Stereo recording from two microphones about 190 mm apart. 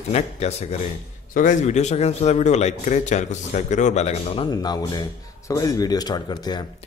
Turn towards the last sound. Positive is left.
turn(degrees=20)  # may be behind; listen again after turning